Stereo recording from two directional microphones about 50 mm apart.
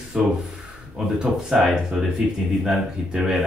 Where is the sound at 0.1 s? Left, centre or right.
Centre.